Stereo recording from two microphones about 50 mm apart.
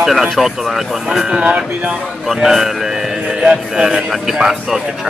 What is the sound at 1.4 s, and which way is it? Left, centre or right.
Speech, right.